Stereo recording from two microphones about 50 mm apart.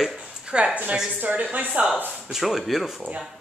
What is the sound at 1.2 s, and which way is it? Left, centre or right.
Speech, right.